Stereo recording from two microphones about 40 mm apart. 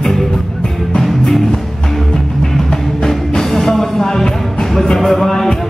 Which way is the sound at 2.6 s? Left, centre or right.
Centre.